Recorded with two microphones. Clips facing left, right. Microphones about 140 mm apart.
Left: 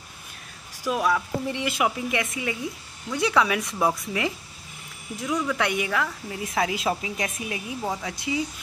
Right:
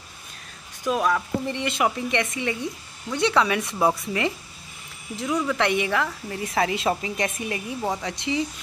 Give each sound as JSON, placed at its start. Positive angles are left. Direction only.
{"t": 0.9, "sound": "speech", "side_deg": 5}